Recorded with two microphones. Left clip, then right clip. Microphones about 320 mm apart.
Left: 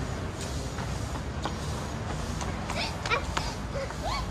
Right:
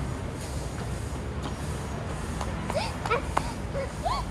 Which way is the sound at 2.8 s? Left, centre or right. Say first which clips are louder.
Left 1 dB; centre.